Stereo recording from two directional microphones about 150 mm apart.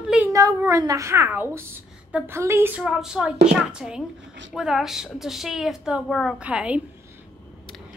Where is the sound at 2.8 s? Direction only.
5° right (ahead or behind).